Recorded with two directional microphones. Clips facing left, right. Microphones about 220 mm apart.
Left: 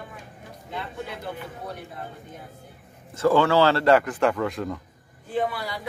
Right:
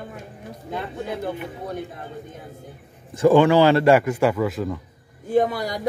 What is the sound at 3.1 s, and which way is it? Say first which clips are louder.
A man's voice: right 5 dB; 15° right (ahead or behind).